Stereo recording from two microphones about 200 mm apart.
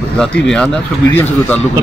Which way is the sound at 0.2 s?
5° left (ahead or behind).